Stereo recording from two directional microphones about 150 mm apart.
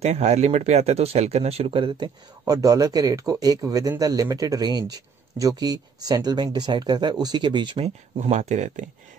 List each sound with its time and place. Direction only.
0.0 s speech: 45° right (ahead or behind)